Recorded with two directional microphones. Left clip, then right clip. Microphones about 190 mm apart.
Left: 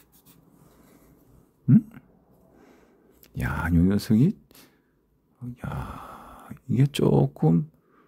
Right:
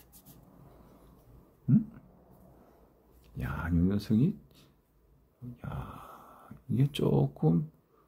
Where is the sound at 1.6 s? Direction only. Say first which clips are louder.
Left 8 dB; 35° left (ahead or behind).